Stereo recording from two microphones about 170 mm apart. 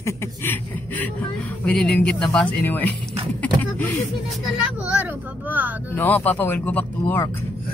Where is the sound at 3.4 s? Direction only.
10° left (ahead or behind).